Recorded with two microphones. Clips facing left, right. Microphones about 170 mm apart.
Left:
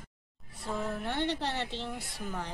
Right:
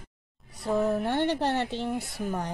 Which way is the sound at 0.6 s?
45° right (ahead or behind).